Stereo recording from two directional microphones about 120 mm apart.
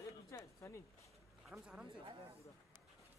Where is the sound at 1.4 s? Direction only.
5° right (ahead or behind).